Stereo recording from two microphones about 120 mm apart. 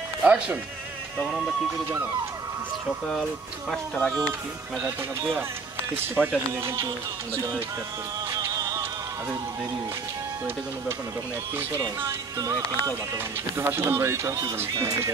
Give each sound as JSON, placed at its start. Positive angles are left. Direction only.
{"t": 0.2, "sound": "speech", "side_deg": -15}
{"t": 1.2, "sound": "speech", "side_deg": 0}
{"t": 3.7, "sound": "speech", "side_deg": 5}
{"t": 6.1, "sound": "speech", "side_deg": -20}
{"t": 8.3, "sound": "music", "side_deg": -25}
{"t": 12.4, "sound": "speech", "side_deg": -25}